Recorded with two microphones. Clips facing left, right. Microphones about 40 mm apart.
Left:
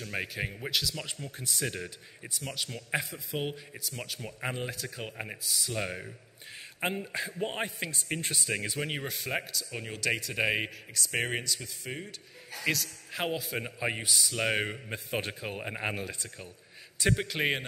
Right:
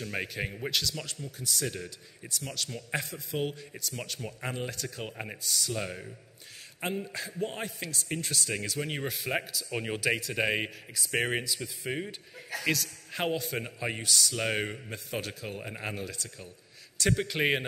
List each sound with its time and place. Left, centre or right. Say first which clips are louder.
0.0 s a man's voice: right 1 dB; centre
1.0 s a man's voice: even; left
8.9 s a man's voice: right 2 dB; centre
9.7 s speech: right 4 dB; centre
12.6 s a man's voice: even; centre
14.9 s a man's voice: left 2 dB; left
17.0 s a man's voice: right 1 dB; centre